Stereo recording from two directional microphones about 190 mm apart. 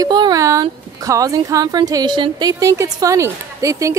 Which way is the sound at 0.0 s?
20° right (ahead or behind).